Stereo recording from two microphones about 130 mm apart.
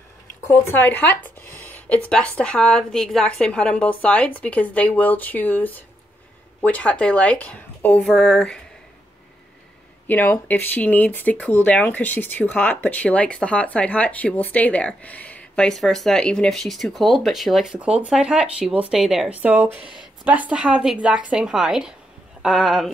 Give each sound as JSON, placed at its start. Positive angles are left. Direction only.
{"t": 0.5, "sound": "speech", "side_deg": 15}
{"t": 10.0, "sound": "speech", "side_deg": 15}
{"t": 19.4, "sound": "a woman's voice", "side_deg": -15}